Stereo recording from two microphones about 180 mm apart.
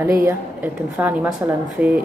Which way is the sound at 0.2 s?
10° right (ahead or behind).